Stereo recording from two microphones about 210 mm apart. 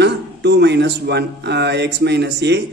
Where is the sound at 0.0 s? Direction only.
50° right (ahead or behind).